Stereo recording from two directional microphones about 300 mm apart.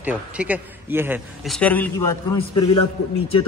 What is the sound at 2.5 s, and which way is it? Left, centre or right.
Speech, left.